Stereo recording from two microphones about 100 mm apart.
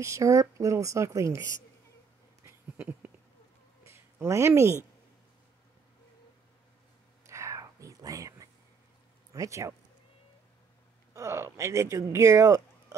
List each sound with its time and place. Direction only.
0.0 s speech: 30° right (ahead or behind)
2.8 s a sound: 15° right (ahead or behind)
3.8 s a sound: 25° right (ahead or behind)
7.2 s whispering: 30° right (ahead or behind)
9.3 s speech: 35° right (ahead or behind)
11.1 s speech: 30° right (ahead or behind)